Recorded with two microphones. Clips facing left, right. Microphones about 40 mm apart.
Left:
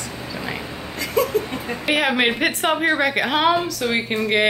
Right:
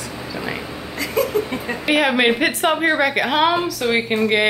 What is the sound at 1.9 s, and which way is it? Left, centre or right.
A woman's voice, centre.